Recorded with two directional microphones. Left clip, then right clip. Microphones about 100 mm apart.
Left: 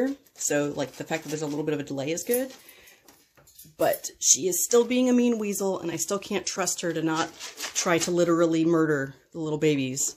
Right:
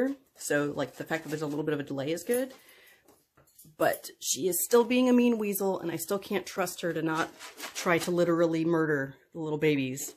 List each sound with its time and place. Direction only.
0.5 s speech: 5° left (ahead or behind)
3.7 s speech: centre (ahead or behind); by 9.9 s 20° left (ahead or behind)